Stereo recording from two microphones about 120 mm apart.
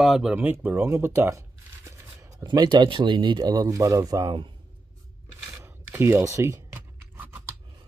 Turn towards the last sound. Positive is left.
turn(degrees=-15)  # may be behind; listen again after turning